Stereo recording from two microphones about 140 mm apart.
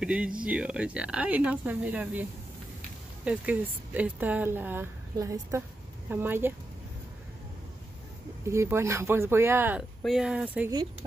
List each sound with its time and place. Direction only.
0.0 s speech: 5° right (ahead or behind)
3.3 s a woman's voice: 10° right (ahead or behind)
8.5 s speech: 20° right (ahead or behind)
10.0 s speech: 5° right (ahead or behind)